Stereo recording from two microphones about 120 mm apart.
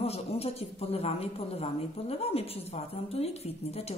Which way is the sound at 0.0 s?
55° left (ahead or behind).